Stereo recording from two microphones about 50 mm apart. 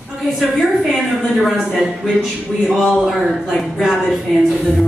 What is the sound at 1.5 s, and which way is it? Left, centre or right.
A woman's voice, centre.